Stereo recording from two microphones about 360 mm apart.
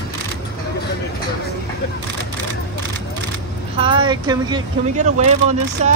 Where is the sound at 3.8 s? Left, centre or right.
Centre.